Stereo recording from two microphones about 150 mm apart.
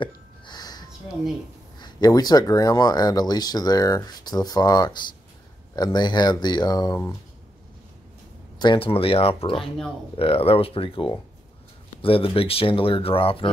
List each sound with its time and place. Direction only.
0.0 s a sound: 30° left (ahead or behind)
1.8 s speech: 30° left (ahead or behind)
8.5 s speech: 35° left (ahead or behind)